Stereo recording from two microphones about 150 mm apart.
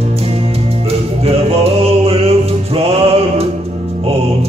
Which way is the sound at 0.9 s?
40° right (ahead or behind).